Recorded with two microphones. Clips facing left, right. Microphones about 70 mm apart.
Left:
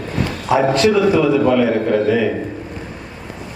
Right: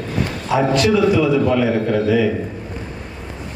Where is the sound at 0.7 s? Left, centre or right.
Left.